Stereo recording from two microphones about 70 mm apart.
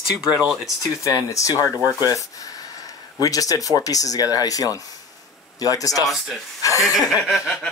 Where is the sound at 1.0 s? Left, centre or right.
Left.